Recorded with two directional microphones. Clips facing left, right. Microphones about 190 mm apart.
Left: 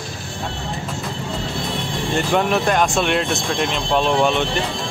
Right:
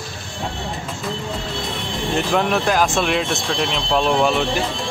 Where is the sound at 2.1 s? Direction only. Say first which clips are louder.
Left 1 dB; centre (ahead or behind).